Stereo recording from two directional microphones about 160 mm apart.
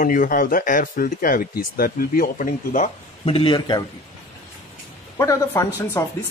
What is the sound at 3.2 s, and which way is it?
Speech, 35° left (ahead or behind).